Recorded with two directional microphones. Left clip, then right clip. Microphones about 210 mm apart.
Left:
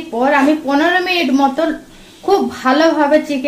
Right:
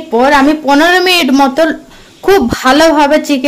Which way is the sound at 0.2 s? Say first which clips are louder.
Right 4 dB; 50° right (ahead or behind).